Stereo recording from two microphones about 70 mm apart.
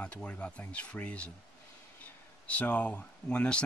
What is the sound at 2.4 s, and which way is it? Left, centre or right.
Speech, left.